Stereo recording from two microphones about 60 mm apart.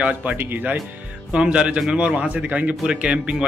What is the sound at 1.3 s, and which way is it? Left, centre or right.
A man's voice, centre.